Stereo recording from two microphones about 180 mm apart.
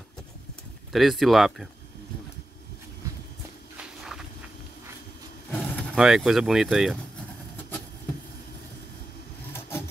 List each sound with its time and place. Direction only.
0.9 s speech: centre (ahead or behind)
3.7 s walk: 5° right (ahead or behind)
5.5 s vehicle: 10° left (ahead or behind)
5.9 s speech: 5° right (ahead or behind)
9.5 s vehicle: 15° left (ahead or behind)